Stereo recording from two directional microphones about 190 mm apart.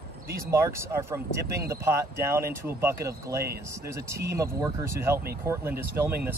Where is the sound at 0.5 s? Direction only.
15° right (ahead or behind).